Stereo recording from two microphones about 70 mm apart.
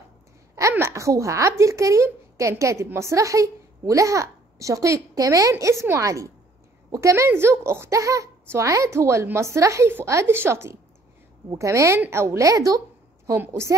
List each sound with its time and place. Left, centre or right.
0.6 s a child's voice: right
5.5 s a woman's voice: right
7.9 s a woman's voice: right
13.5 s speech: right